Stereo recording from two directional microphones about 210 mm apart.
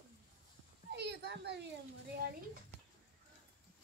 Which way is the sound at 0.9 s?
55° right (ahead or behind).